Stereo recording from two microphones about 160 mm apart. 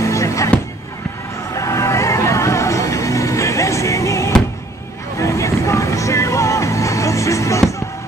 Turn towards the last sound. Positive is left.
turn(degrees=20)  # may be behind; listen again after turning